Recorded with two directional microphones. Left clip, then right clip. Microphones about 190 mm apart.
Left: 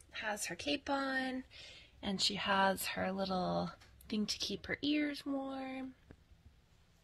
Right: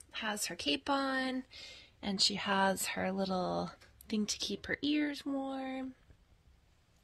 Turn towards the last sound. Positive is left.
turn(degrees=-35)  # may be behind; listen again after turning